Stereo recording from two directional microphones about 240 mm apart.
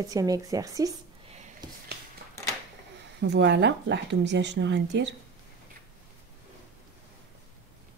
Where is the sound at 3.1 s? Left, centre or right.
Right.